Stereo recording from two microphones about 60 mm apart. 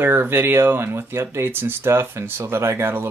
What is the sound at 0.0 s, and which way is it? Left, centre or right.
Speech, right.